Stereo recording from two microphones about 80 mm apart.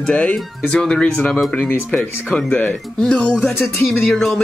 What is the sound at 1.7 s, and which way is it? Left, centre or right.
Speech, left.